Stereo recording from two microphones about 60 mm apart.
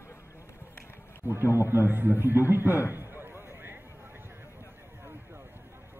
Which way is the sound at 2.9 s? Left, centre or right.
Right.